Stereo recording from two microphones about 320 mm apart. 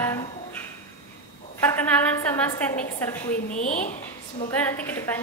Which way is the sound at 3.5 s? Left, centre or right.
Left.